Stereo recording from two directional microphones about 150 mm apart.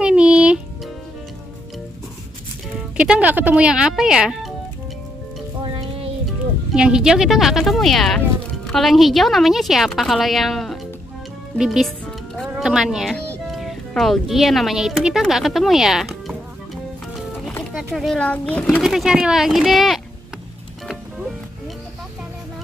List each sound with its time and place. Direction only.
0.0 s music: 5° right (ahead or behind)
3.0 s a woman's voice: 10° right (ahead or behind)
5.6 s music: 40° right (ahead or behind)
6.7 s a woman's voice: 5° right (ahead or behind)
17.9 s a child's voice: 5° left (ahead or behind)
18.8 s a woman's voice: centre (ahead or behind)